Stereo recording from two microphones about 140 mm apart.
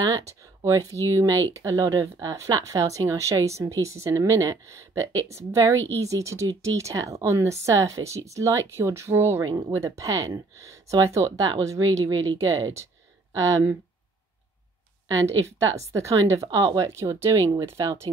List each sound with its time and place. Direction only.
0.6 s speech: 25° right (ahead or behind)
15.0 s speech: 20° right (ahead or behind)